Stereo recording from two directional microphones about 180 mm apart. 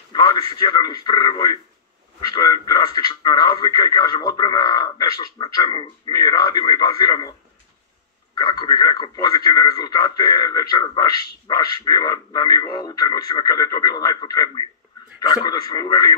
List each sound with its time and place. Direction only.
0.1 s a man's voice: 20° left (ahead or behind)
8.4 s speech: 25° left (ahead or behind)